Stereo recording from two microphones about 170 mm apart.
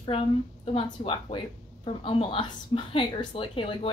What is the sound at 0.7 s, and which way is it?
A woman's voice, 30° left (ahead or behind).